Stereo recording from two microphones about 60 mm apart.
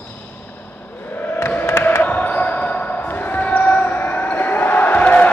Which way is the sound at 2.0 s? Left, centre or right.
Left.